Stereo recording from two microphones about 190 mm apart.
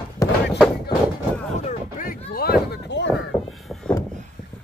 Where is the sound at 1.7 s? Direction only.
40° left (ahead or behind); by 3.2 s 65° left (ahead or behind).